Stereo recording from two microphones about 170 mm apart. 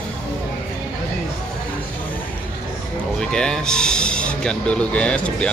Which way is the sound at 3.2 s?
5° left (ahead or behind).